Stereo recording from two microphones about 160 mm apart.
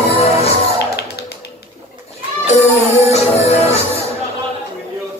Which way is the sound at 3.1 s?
40° left (ahead or behind).